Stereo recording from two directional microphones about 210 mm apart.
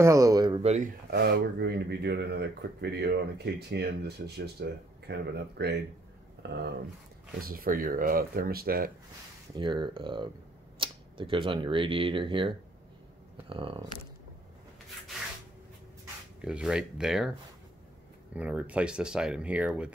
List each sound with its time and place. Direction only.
0.0 s speech: 15° right (ahead or behind); by 0.9 s 30° right (ahead or behind)
1.1 s speech: 50° right (ahead or behind)
9.6 s speech: 20° right (ahead or behind)
16.3 s speech: 5° right (ahead or behind)
18.3 s speech: 5° right (ahead or behind)